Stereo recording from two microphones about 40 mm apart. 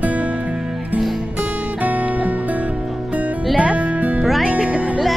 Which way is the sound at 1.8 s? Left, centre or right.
Right.